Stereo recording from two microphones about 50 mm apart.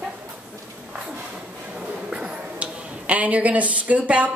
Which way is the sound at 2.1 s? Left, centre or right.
Right.